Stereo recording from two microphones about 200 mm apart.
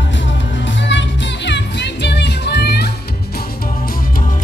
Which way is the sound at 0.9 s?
65° left (ahead or behind).